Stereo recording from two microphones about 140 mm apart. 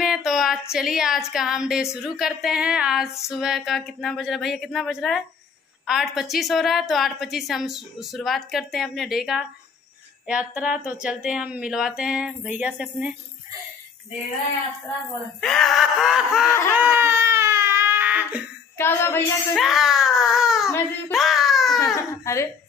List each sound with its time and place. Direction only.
0.0 s a sound: centre (ahead or behind)
1.3 s a woman's voice: 5° right (ahead or behind)
15.4 s a woman's voice: centre (ahead or behind)
16.7 s crying: 15° right (ahead or behind)
18.8 s child singing: 15° left (ahead or behind)
19.5 s a woman's voice: centre (ahead or behind)
21.1 s a sound: centre (ahead or behind)
21.9 s speech: 20° left (ahead or behind)